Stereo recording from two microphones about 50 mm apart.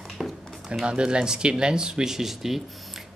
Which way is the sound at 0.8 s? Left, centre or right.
Centre.